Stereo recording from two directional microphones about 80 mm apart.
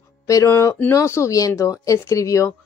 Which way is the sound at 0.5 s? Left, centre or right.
Left.